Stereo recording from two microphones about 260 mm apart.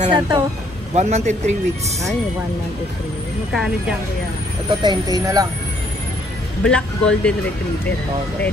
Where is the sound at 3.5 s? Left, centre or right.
Centre.